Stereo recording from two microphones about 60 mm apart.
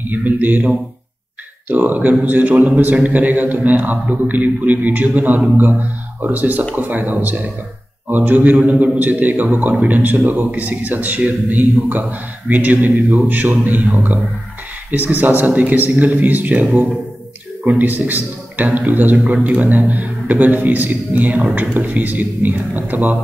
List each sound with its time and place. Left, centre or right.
0.1 s a man's voice: right